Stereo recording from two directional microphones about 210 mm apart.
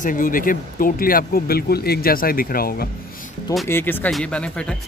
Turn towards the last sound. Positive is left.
turn(degrees=5)  # may be behind; listen again after turning